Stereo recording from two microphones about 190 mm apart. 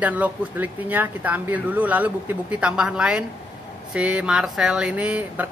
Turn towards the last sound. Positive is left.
turn(degrees=-5)  # may be behind; listen again after turning